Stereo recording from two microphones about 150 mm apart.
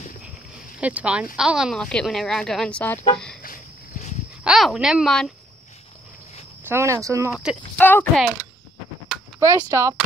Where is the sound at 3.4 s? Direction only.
60° left (ahead or behind).